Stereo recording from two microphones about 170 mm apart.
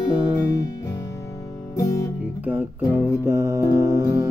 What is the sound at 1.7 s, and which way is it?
Music, 20° left (ahead or behind).